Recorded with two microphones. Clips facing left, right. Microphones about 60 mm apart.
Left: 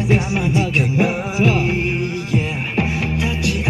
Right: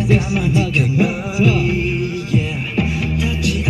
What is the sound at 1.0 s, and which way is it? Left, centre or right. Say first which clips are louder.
Music: right 1 dB; left.